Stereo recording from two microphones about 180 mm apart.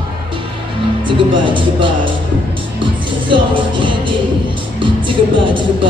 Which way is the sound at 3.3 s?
30° right (ahead or behind).